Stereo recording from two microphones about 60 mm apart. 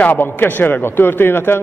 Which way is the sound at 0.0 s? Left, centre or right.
Left.